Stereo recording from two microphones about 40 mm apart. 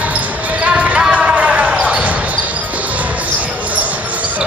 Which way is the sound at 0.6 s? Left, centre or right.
Right.